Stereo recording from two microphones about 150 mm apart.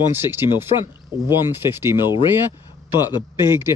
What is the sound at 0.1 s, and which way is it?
Speech, 15° right (ahead or behind).